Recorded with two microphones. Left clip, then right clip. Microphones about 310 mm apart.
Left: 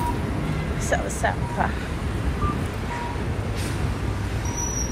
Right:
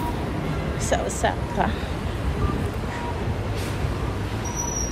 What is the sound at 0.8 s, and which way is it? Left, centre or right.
Speech, right.